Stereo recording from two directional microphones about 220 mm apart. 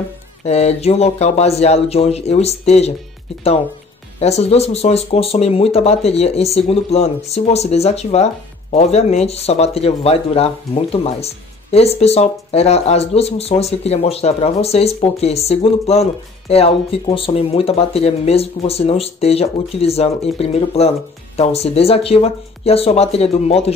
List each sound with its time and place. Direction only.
0.5 s speech: 30° left (ahead or behind)
4.2 s speech: 30° left (ahead or behind)